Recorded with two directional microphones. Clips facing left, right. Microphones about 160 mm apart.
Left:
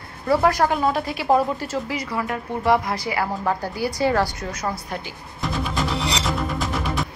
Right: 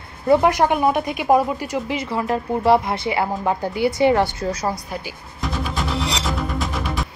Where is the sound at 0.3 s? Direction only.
20° right (ahead or behind).